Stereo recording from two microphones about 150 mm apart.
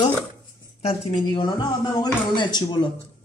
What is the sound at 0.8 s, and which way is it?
Speech, 30° left (ahead or behind).